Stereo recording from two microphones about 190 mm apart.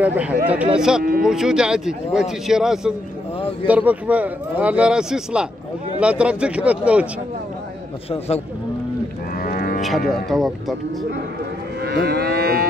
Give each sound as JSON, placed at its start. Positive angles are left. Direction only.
{"t": 0.0, "sound": "speech", "side_deg": -10}
{"t": 9.4, "sound": "moo", "side_deg": 50}
{"t": 9.8, "sound": "speech", "side_deg": 0}
{"t": 11.8, "sound": "livestock", "side_deg": -60}